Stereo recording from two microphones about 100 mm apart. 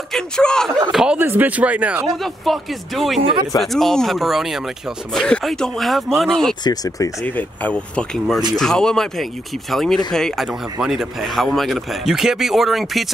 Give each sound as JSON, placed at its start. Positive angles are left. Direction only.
{"t": 0.1, "sound": "speech", "side_deg": 5}
{"t": 1.1, "sound": "speech", "side_deg": -20}
{"t": 2.0, "sound": "speech", "side_deg": 0}
{"t": 6.6, "sound": "speech", "side_deg": 40}
{"t": 7.2, "sound": "speech", "side_deg": 15}